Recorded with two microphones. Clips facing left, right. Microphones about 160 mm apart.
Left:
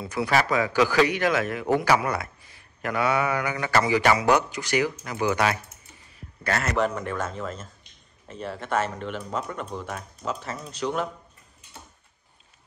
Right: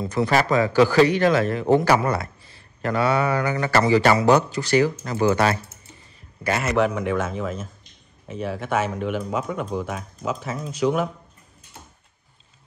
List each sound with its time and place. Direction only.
0.0 s a man's voice: 10° left (ahead or behind)
6.4 s a man's voice: 10° right (ahead or behind)